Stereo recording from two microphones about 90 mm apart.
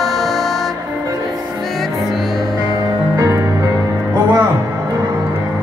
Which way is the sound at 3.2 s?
35° right (ahead or behind).